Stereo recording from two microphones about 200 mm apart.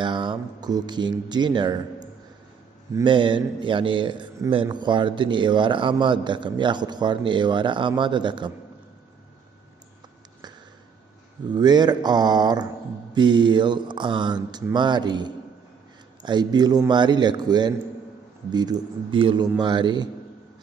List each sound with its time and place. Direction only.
0.0 s speech: 25° right (ahead or behind)
3.0 s a man's voice: 25° right (ahead or behind)
11.5 s a man's voice: 20° right (ahead or behind)